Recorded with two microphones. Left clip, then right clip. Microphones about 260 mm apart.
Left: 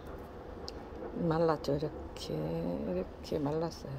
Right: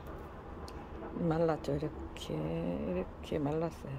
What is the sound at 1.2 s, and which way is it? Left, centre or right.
Speech, centre.